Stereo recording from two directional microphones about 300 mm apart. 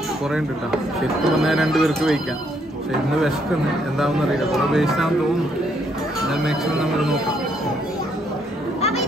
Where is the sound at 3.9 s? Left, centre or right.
Centre.